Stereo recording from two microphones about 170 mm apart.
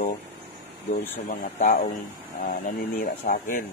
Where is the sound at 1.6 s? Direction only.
45° left (ahead or behind).